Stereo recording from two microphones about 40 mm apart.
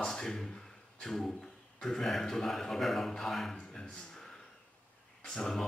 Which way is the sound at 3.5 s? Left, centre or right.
Left.